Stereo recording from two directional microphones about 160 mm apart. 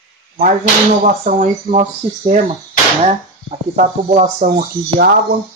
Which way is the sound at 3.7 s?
50° right (ahead or behind).